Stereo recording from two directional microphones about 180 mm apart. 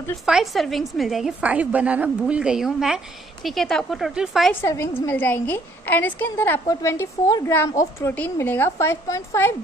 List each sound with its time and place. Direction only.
0.2 s a woman's voice: centre (ahead or behind)
4.6 s a woman's voice: 15° left (ahead or behind)